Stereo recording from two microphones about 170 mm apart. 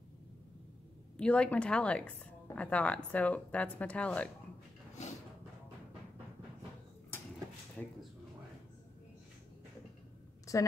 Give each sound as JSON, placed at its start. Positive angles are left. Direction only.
{"t": 1.1, "sound": "a woman's voice", "side_deg": 5}
{"t": 7.8, "sound": "speech", "side_deg": 5}
{"t": 10.5, "sound": "a sound", "side_deg": 20}